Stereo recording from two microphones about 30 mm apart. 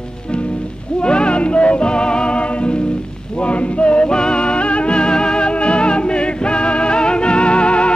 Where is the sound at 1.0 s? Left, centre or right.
Left.